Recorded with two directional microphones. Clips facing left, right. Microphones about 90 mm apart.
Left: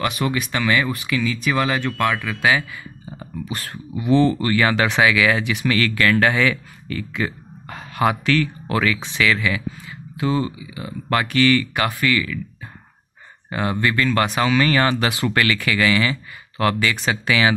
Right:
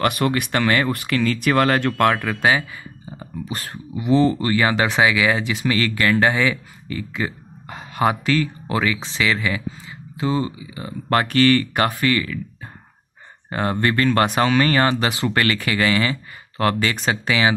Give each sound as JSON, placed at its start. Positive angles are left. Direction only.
{"t": 0.0, "sound": "speech", "side_deg": -50}
{"t": 2.4, "sound": "speech", "side_deg": -30}
{"t": 13.5, "sound": "speech", "side_deg": -40}